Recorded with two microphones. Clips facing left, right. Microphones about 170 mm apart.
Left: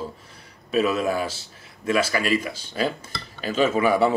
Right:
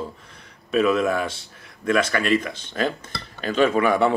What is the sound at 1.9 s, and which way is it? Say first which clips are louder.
A man's voice: right 2 dB; 5° left (ahead or behind).